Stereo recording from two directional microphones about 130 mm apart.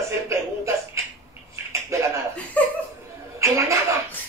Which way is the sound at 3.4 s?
20° right (ahead or behind).